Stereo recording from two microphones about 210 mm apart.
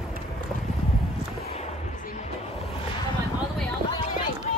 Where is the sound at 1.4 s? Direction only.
30° left (ahead or behind).